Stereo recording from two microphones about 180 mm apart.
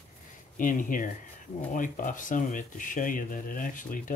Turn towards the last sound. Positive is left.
turn(degrees=45)  # may be behind; listen again after turning